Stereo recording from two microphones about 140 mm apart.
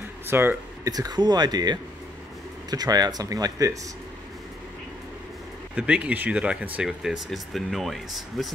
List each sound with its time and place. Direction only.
0.3 s speech: 15° right (ahead or behind)
5.8 s speech: 10° right (ahead or behind)